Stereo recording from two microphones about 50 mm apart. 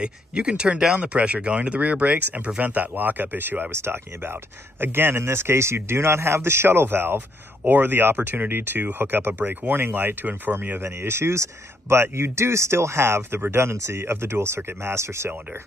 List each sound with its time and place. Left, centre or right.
0.0 s speech: centre; by 3.6 s right
3.7 s speech: right
10.8 s speech: right